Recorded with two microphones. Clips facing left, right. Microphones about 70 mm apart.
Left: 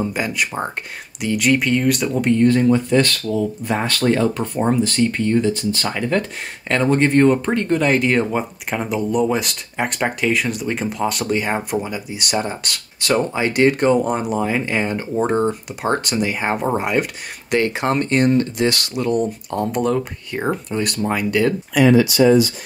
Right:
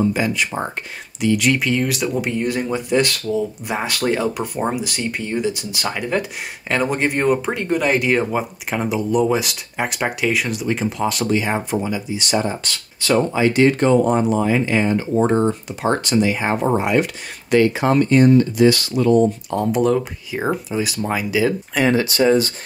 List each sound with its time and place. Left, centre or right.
0.0 s speech: centre
17.6 s speech: left
19.5 s speech: centre
21.7 s speech: right